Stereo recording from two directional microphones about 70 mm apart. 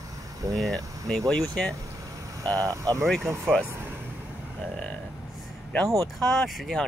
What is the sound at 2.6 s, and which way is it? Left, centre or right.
Speech, right.